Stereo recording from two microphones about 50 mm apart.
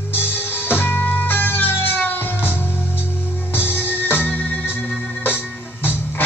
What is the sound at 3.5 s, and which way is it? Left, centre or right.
Music, left.